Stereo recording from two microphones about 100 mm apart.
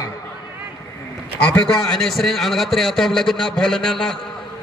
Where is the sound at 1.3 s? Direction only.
10° left (ahead or behind).